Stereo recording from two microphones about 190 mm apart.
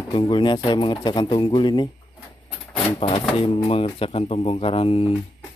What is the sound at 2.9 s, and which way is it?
Speech, 30° left (ahead or behind).